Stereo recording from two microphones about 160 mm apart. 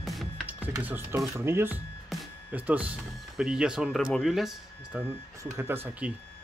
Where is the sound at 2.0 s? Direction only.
10° right (ahead or behind).